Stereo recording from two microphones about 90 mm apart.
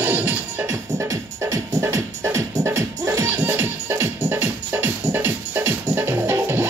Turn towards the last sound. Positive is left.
turn(degrees=-25)  # may be behind; listen again after turning